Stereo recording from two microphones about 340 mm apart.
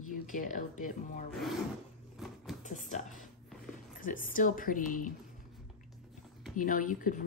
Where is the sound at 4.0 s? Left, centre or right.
Left.